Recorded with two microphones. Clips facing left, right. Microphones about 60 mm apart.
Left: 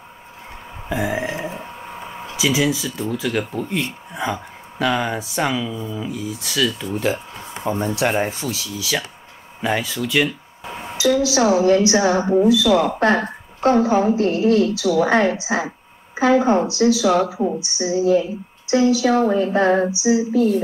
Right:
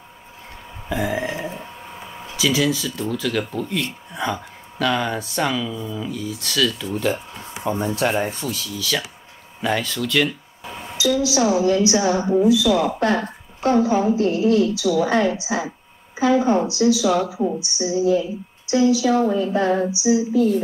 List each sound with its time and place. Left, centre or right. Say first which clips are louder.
0.8 s a sound: left 1 dB; centre
2.3 s speech: left 1 dB; centre
7.7 s a woman's voice: left 1 dB; left
8.7 s speech: left 1 dB; centre
10.6 s a sound: left 3 dB; left
11.0 s a woman's voice: left 2 dB; left